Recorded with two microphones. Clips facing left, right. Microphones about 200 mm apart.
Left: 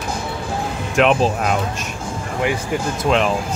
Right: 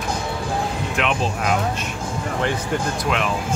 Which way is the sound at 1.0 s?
40° left (ahead or behind).